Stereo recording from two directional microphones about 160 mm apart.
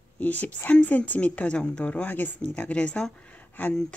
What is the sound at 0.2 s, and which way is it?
Speech, 10° left (ahead or behind).